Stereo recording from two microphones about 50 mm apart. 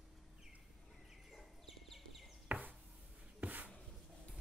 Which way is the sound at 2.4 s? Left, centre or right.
Right.